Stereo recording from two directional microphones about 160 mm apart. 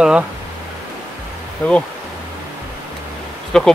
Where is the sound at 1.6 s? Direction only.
10° left (ahead or behind).